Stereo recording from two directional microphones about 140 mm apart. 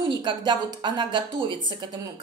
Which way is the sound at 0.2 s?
35° right (ahead or behind).